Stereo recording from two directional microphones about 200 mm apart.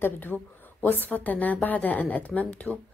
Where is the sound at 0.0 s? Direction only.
10° left (ahead or behind).